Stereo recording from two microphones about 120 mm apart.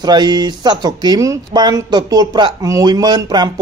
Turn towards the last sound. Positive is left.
turn(degrees=-35)  # may be behind; listen again after turning